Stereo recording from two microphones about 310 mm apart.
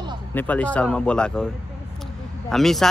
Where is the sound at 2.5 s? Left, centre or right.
Centre.